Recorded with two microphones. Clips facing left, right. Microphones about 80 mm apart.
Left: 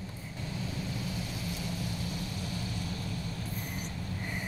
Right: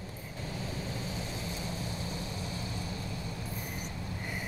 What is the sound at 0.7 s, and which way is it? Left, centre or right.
Vehicle, right.